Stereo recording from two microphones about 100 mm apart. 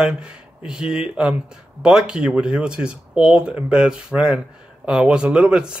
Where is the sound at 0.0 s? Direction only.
10° right (ahead or behind).